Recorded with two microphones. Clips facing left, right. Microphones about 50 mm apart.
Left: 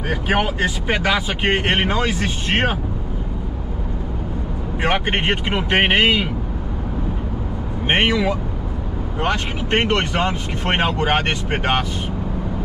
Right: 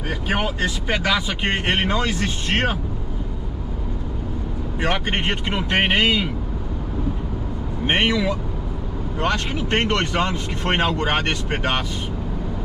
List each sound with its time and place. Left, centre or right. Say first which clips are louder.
0.1 s speech: left 4 dB; centre
4.7 s speech: left 3 dB; left
7.8 s speech: left 2 dB; left